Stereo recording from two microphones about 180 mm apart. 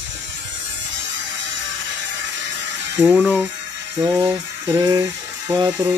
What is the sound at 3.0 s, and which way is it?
Speech, 10° right (ahead or behind).